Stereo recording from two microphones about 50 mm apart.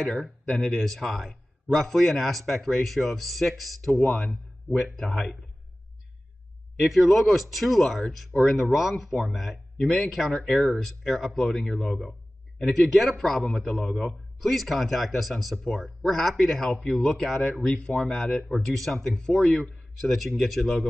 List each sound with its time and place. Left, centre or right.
0.0 s a man's voice: centre
6.8 s a man's voice: centre
9.8 s a man's voice: centre
10.3 s a man's voice: centre
19.6 s a man's voice: centre